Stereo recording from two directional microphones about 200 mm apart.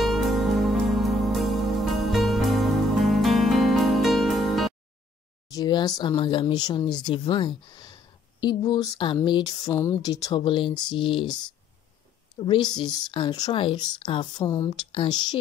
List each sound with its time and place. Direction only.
0.0 s music: centre (ahead or behind)
5.5 s speech: 20° left (ahead or behind)
12.4 s speech: 25° left (ahead or behind)